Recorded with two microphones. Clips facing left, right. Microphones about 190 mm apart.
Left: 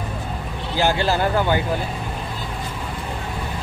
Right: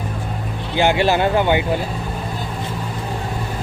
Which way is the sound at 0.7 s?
20° right (ahead or behind).